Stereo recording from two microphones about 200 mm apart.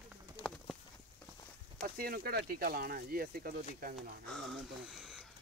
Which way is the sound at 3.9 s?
Centre (ahead or behind).